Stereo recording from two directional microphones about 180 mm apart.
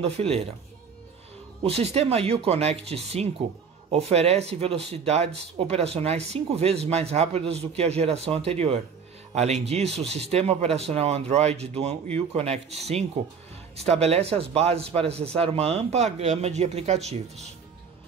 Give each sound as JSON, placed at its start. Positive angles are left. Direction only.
{"t": 0.0, "sound": "speech", "side_deg": -35}
{"t": 1.6, "sound": "speech", "side_deg": -35}